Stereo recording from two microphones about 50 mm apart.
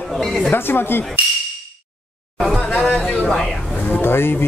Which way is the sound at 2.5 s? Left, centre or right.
Left.